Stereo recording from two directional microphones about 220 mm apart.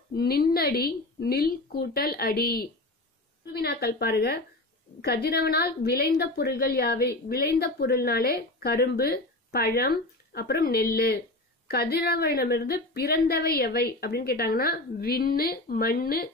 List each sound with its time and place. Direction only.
0.1 s a woman's voice: 45° left (ahead or behind)